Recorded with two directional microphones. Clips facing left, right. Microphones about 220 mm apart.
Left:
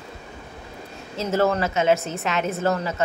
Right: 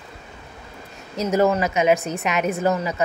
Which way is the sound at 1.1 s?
15° right (ahead or behind).